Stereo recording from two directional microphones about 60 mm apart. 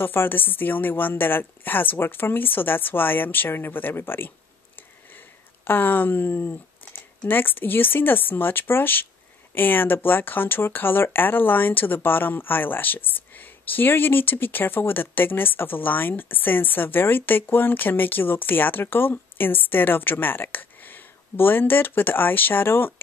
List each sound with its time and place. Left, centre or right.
0.0 s speech: left
5.7 s speech: left